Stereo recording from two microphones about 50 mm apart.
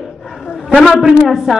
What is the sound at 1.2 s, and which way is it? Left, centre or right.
Speech, centre.